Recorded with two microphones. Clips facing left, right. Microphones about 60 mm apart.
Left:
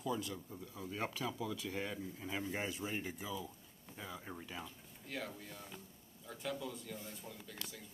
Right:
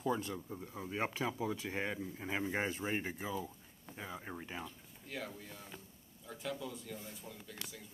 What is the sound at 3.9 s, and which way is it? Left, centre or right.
Speech, right.